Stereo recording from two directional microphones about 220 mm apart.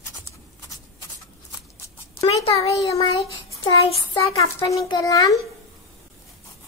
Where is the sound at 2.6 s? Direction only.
15° left (ahead or behind).